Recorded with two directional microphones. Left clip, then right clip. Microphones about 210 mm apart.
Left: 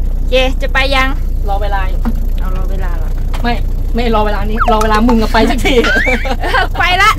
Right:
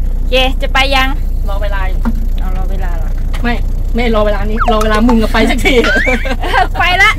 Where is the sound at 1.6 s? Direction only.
15° left (ahead or behind).